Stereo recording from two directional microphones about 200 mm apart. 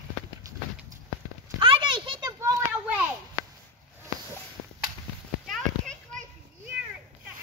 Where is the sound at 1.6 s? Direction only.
25° right (ahead or behind).